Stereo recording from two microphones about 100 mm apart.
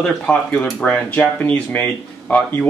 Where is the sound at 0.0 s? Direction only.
10° left (ahead or behind).